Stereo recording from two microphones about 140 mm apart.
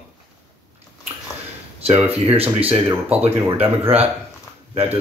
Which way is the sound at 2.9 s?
15° right (ahead or behind).